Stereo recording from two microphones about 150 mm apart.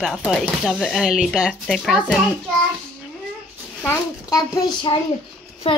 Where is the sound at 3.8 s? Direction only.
20° left (ahead or behind).